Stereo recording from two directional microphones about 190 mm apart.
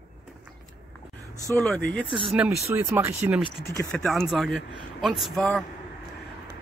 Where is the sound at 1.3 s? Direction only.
15° left (ahead or behind).